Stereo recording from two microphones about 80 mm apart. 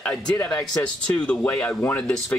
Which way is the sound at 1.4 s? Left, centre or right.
Left.